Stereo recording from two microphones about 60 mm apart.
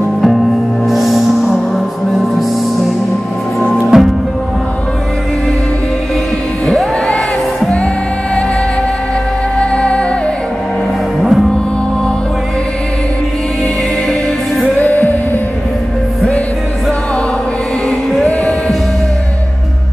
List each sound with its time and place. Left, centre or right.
0.8 s music: centre
3.9 s music: centre
6.6 s music: centre
9.6 s music: centre
11.2 s music: centre
14.6 s music: left